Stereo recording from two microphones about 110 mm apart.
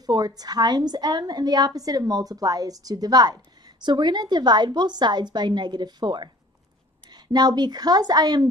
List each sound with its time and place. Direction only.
0.0 s a woman's voice: 35° right (ahead or behind)